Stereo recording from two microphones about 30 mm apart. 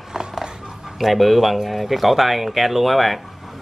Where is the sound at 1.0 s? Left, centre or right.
Centre.